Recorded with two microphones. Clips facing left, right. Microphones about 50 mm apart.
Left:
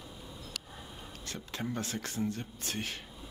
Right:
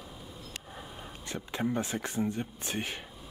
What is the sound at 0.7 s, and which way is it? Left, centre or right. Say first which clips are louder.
Speech: right 3 dB; centre.